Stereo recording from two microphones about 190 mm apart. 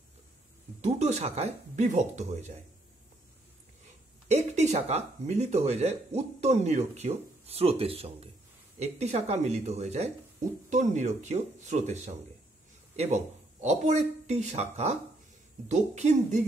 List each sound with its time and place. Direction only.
0.7 s speech: 35° right (ahead or behind)
4.3 s speech: 35° right (ahead or behind)